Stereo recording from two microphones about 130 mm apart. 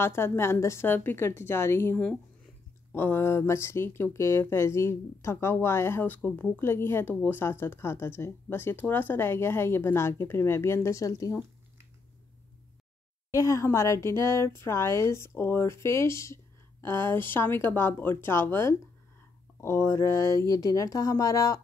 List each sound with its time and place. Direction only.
0.0 s speech: 20° left (ahead or behind)
13.3 s speech: 25° left (ahead or behind)